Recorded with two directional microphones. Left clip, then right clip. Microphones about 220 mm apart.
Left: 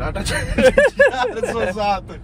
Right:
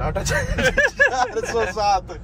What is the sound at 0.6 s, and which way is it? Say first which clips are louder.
A man's voice: left 5 dB; 5° right (ahead or behind).